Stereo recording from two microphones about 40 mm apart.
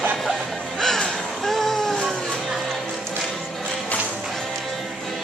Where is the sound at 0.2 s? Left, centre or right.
Centre.